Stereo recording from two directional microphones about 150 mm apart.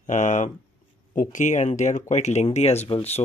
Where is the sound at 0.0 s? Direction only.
55° left (ahead or behind).